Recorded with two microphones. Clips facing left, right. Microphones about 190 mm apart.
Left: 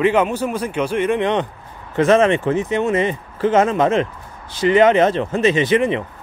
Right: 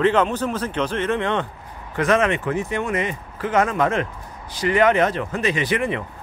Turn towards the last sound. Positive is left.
turn(degrees=25)  # may be behind; listen again after turning